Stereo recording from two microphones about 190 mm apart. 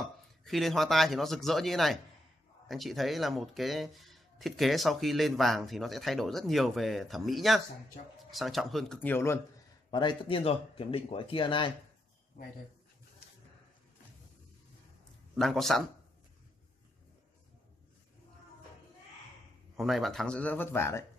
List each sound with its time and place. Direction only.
0.0 s speech: centre (ahead or behind)
9.8 s speech: 25° left (ahead or behind)
15.3 s speech: centre (ahead or behind)
19.8 s speech: centre (ahead or behind)